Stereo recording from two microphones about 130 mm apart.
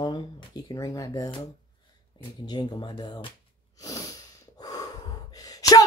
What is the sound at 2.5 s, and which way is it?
Speech, 35° left (ahead or behind).